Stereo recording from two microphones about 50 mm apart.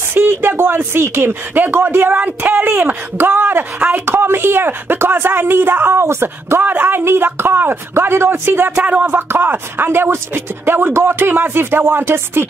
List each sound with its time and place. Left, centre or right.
0.1 s speech: right
1.5 s speech: right
2.1 s speech: right
6.6 s speech: right
6.9 s speech: right
8.7 s speech: right
9.3 s speech: right